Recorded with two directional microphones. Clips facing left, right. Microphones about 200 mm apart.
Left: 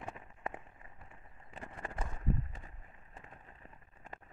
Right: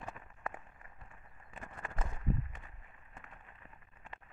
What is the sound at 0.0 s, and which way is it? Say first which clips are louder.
Walk: left 1 dB; 25° left (ahead or behind).